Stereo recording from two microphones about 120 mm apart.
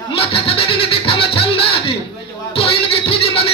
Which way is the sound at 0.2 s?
55° left (ahead or behind).